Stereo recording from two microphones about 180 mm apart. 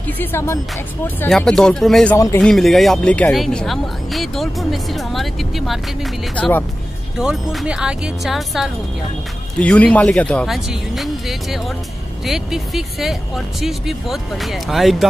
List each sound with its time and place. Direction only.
0.2 s music: 15° left (ahead or behind)
1.0 s speech: 10° left (ahead or behind)
2.1 s speech: 20° left (ahead or behind)
2.4 s speech: centre (ahead or behind)